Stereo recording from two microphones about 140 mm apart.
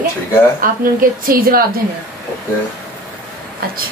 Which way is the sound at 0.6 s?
85° right.